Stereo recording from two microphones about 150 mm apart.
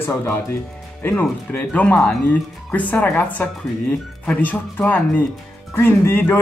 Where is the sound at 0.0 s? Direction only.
15° left (ahead or behind).